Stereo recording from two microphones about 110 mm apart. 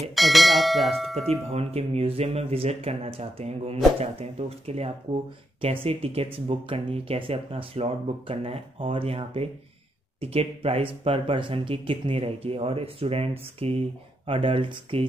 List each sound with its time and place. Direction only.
0.1 s speech: centre (ahead or behind)
1.5 s speech: 70° right (ahead or behind)
5.6 s speech: 55° right (ahead or behind)
11.1 s speech: 50° right (ahead or behind)